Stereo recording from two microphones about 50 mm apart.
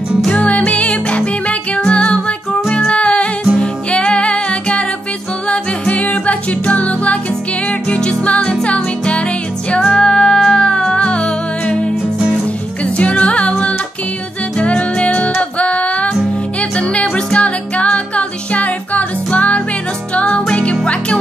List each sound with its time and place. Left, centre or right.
0.3 s music: left